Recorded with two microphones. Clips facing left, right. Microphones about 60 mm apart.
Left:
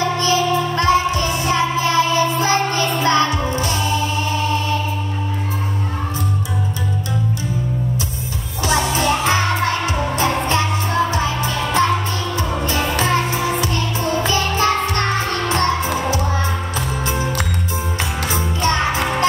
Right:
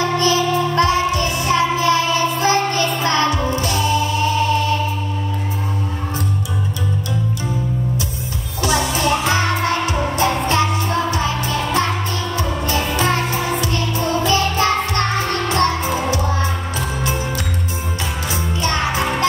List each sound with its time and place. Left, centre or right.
0.3 s music: left
8.6 s music: left
13.0 s music: left
18.3 s music: left